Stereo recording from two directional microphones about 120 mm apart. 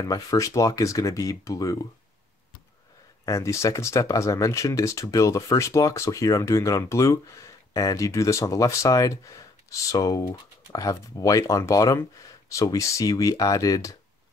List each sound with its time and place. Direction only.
0.1 s speech: 30° left (ahead or behind)
3.3 s speech: 25° left (ahead or behind)